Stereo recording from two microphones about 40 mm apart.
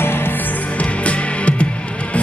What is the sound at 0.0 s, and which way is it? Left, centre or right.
Music, left.